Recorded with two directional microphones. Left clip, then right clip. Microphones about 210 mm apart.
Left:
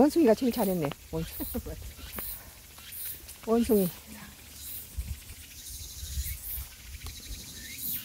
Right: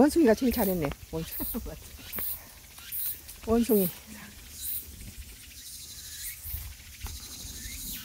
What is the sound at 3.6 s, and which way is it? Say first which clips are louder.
Speech: even; 5° right (ahead or behind).